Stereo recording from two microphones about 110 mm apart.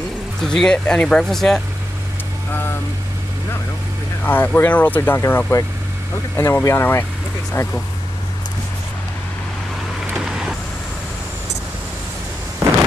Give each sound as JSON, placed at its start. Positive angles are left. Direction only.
{"t": 0.4, "sound": "speech", "side_deg": 5}
{"t": 4.2, "sound": "speech", "side_deg": 20}
{"t": 9.9, "sound": "vehicle", "side_deg": -5}